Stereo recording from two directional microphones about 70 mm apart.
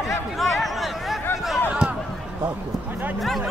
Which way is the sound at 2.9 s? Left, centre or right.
Right.